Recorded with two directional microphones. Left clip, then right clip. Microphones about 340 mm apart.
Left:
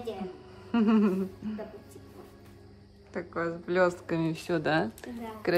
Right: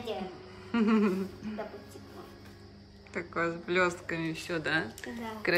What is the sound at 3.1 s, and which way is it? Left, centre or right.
Speech, centre.